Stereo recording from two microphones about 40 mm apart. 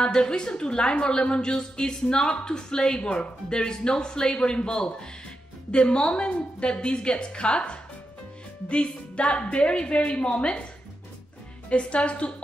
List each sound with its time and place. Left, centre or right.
0.0 s a woman's voice: left
11.7 s a woman's voice: left